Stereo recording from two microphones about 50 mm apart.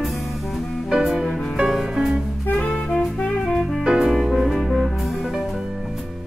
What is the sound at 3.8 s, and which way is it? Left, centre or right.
Music, centre.